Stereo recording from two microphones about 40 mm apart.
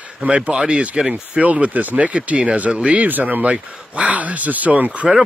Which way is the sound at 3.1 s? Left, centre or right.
Right.